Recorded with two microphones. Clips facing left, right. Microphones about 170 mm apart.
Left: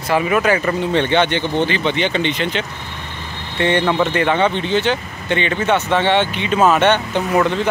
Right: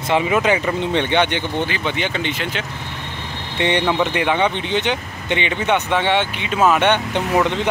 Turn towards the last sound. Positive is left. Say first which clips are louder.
# left 2 dB
turn(degrees=-15)  # may be behind; listen again after turning